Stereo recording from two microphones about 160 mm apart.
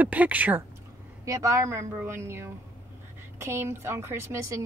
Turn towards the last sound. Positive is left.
turn(degrees=-20)  # may be behind; listen again after turning